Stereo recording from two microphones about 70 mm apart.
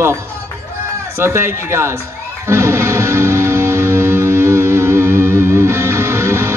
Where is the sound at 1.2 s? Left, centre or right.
Right.